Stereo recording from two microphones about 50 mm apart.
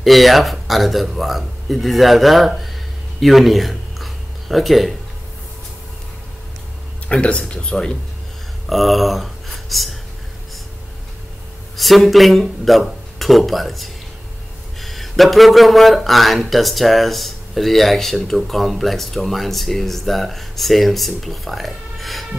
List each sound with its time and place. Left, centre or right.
0.0 s speech: centre
3.2 s a sound: centre
7.1 s speech: left
8.6 s speech: centre
11.7 s speech: centre